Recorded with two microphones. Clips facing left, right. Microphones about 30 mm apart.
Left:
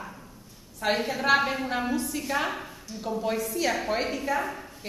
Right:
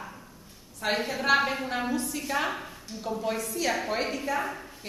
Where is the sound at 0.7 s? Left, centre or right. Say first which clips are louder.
Left 2 dB; centre.